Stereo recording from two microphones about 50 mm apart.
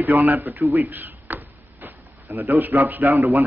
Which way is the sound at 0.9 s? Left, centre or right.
Right.